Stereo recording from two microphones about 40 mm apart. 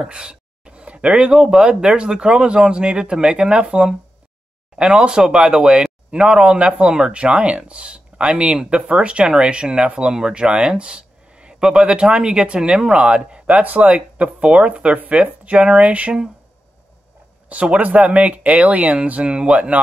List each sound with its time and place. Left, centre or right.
0.0 s speech: right
17.5 s speech: right
19.2 s speech: right